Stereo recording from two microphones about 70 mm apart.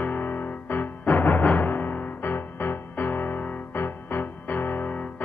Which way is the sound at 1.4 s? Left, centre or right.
Left.